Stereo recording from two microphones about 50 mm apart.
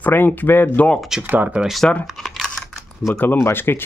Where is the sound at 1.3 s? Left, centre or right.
Right.